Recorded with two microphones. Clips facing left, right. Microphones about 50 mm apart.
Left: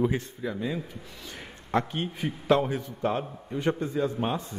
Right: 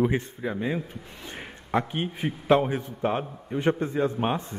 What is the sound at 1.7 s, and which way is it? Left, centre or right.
A man's voice, right.